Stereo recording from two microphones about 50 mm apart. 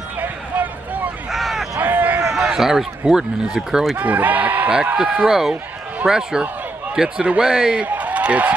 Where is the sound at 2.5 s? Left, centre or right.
Centre.